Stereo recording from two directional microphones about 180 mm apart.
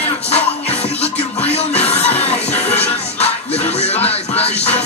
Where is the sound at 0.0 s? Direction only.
35° left (ahead or behind).